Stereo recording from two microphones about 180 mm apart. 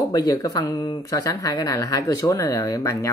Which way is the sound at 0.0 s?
20° left (ahead or behind).